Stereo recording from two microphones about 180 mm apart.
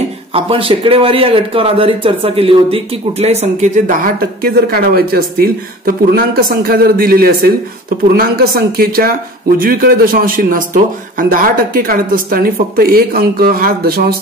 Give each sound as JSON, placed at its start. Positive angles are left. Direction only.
{"t": 0.3, "sound": "a man's voice", "side_deg": -30}